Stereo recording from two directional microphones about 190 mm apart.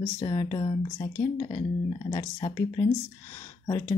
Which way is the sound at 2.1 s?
25° left (ahead or behind).